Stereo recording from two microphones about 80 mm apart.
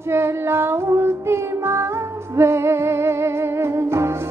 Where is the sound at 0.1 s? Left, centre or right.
Right.